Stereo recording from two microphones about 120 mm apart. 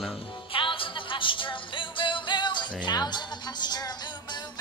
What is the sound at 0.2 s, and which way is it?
Music, 45° left (ahead or behind).